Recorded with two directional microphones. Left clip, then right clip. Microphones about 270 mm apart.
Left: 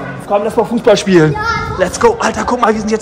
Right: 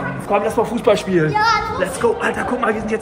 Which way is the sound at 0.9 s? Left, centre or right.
Left.